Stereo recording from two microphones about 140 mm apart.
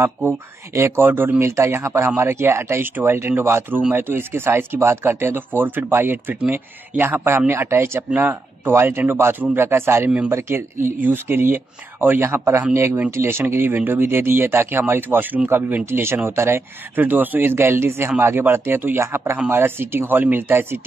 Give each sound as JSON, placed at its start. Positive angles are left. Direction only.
{"t": 0.7, "sound": "speech", "side_deg": -15}